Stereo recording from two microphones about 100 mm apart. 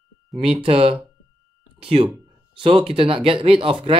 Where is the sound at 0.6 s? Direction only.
70° right (ahead or behind).